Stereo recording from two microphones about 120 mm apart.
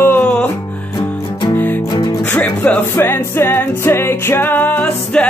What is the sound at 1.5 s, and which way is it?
Music, 15° left (ahead or behind).